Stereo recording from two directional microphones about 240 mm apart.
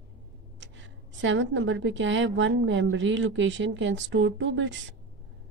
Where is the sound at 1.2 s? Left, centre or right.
Right.